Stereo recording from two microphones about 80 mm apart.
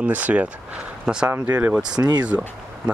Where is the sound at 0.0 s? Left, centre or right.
Centre.